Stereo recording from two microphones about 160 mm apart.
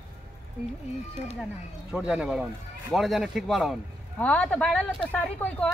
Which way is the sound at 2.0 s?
5° right (ahead or behind).